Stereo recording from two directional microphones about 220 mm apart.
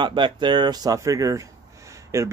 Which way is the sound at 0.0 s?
20° right (ahead or behind).